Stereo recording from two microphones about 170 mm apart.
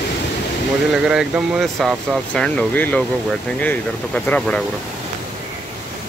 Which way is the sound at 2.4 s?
10° left (ahead or behind).